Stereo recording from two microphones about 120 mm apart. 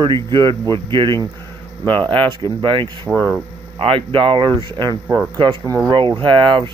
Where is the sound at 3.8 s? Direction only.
45° right (ahead or behind).